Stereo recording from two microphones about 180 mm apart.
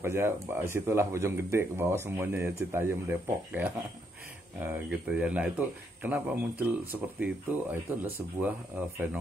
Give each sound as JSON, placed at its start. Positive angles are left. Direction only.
{"t": 0.0, "sound": "speech", "side_deg": -15}